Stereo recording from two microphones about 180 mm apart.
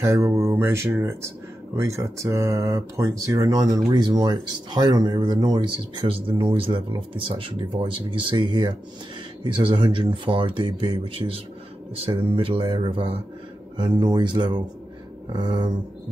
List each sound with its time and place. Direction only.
0.0 s speech: 15° right (ahead or behind)